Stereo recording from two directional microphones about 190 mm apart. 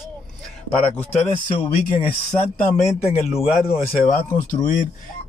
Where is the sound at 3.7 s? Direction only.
40° left (ahead or behind).